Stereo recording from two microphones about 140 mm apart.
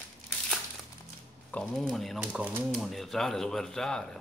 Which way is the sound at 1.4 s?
5° left (ahead or behind).